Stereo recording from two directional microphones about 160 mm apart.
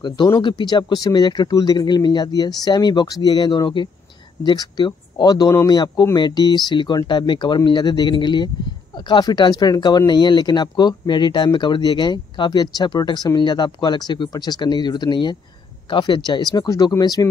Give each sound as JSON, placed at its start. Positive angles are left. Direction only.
{"t": 0.0, "sound": "speech", "side_deg": 30}